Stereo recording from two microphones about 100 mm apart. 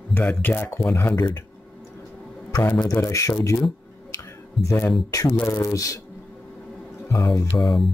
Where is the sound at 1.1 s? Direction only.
40° left (ahead or behind).